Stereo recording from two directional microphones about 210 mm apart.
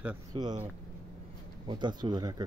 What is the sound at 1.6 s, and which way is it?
Speech, 20° right (ahead or behind).